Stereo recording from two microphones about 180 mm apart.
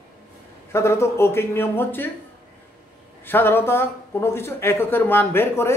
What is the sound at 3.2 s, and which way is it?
A man's voice, 10° left (ahead or behind).